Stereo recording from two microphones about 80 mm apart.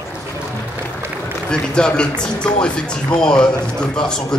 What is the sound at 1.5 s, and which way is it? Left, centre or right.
A man's voice, centre.